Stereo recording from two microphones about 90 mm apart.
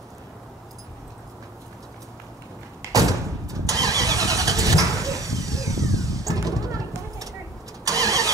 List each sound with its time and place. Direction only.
2.8 s vehicle: 40° right (ahead or behind)